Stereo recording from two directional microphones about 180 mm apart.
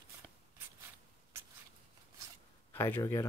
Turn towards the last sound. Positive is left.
turn(degrees=15)  # may be behind; listen again after turning